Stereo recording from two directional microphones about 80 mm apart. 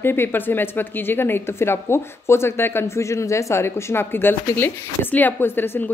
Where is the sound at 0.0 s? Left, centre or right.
Left.